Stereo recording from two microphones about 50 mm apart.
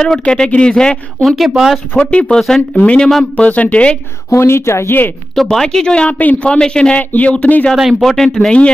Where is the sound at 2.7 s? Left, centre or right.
Left.